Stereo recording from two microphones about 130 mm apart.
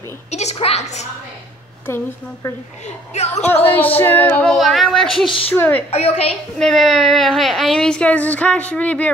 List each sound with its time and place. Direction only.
0.3 s a woman's voice: 55° left (ahead or behind)
2.8 s a woman's voice: 60° left (ahead or behind)
3.6 s speech: 15° left (ahead or behind)
5.5 s speech: 15° left (ahead or behind)
5.9 s a woman's voice: 50° left (ahead or behind)
6.6 s speech: centre (ahead or behind)